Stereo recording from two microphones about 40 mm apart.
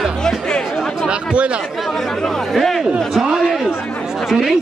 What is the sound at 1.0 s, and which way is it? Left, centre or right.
Speech, right.